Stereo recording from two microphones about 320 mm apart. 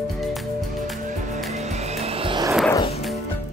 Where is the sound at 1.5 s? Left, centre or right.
Right.